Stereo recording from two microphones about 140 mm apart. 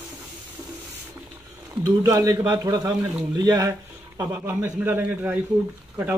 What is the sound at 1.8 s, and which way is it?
Speech, 25° right (ahead or behind).